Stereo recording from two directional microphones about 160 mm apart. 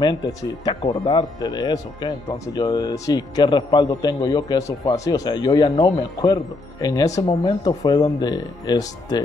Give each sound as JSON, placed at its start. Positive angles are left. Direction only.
{"t": 0.0, "sound": "speech", "side_deg": 25}